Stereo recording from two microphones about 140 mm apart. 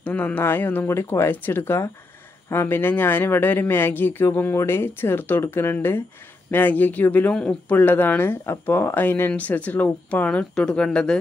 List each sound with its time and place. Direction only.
0.0 s speech: 10° left (ahead or behind)